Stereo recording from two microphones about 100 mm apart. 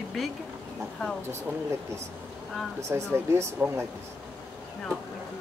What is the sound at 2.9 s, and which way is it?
Speech, 20° right (ahead or behind).